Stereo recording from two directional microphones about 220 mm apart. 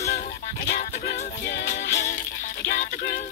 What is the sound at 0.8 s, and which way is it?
Music, 35° left (ahead or behind).